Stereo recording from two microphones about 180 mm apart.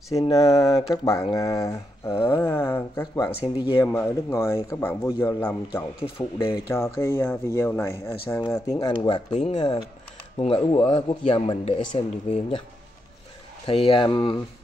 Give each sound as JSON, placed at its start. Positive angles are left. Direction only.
{"t": 0.3, "sound": "speech", "side_deg": 15}
{"t": 9.3, "sound": "speech", "side_deg": 40}
{"t": 9.6, "sound": "speech", "side_deg": 30}
{"t": 13.7, "sound": "speech", "side_deg": 30}